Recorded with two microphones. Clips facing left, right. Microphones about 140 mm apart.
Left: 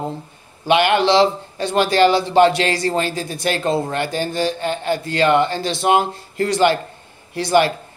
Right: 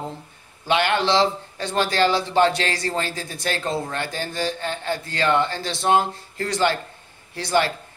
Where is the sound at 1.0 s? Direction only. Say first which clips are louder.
Left 5 dB; 70° left (ahead or behind).